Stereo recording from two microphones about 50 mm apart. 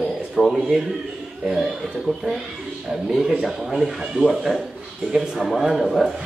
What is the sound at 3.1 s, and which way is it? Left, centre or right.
Speech, centre.